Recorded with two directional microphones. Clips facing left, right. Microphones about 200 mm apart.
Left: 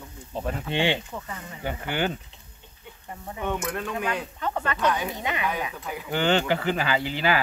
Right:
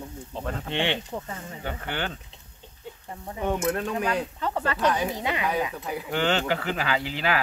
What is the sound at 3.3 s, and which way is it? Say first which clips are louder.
Speech: right 3 dB; 30° right (ahead or behind).